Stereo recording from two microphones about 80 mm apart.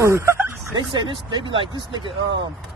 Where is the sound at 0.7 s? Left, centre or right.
Right.